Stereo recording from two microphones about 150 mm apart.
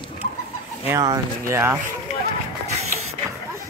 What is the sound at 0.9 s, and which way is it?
Speech, 20° right (ahead or behind).